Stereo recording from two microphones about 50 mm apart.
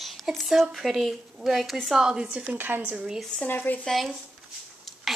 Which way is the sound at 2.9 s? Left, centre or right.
Centre.